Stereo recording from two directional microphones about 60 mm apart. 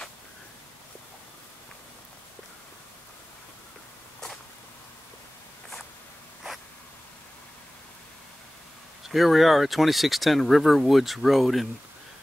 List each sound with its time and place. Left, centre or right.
9.1 s speech: centre